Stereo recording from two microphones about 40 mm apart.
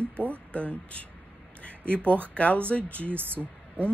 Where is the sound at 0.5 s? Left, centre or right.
Left.